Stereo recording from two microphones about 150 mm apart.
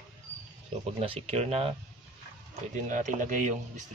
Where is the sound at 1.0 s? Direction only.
40° right (ahead or behind).